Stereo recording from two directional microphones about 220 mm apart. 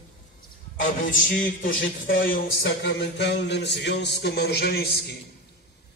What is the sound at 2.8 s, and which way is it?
A man's voice, 50° left (ahead or behind).